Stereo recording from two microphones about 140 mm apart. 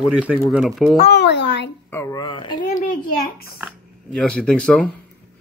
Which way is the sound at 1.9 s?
20° left (ahead or behind).